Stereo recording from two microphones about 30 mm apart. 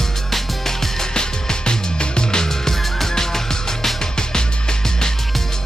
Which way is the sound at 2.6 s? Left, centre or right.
Centre.